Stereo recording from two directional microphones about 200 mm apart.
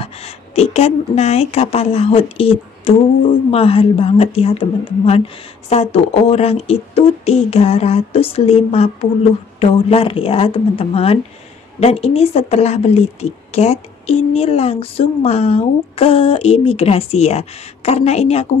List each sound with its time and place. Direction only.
0.0 s a woman's voice: 30° left (ahead or behind)